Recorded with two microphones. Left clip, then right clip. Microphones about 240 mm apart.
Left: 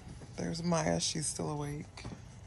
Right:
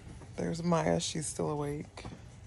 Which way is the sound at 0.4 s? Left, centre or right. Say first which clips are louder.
Right 3 dB; centre.